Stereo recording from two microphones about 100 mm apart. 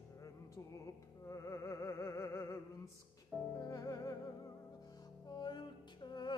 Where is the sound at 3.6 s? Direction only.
40° left (ahead or behind).